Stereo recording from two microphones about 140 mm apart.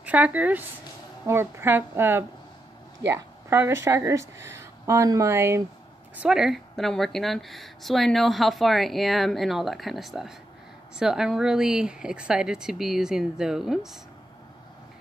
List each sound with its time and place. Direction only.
0.0 s a woman's voice: 10° right (ahead or behind)
6.1 s a woman's voice: 5° right (ahead or behind)